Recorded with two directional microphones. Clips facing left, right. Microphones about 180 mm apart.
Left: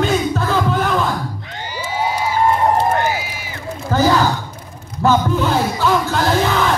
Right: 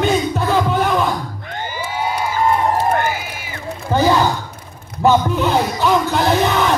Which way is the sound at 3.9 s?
20° right (ahead or behind).